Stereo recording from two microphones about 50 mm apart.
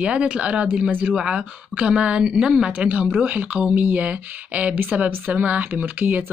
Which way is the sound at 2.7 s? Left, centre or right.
Right.